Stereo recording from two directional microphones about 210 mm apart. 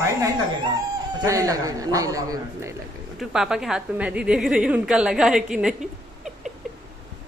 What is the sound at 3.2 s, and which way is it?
A woman's voice, 5° right (ahead or behind).